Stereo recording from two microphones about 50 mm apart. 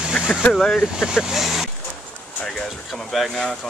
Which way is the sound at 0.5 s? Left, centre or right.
Centre.